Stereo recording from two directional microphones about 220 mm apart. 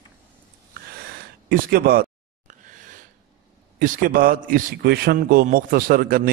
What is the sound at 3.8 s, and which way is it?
A man's voice, 40° right (ahead or behind).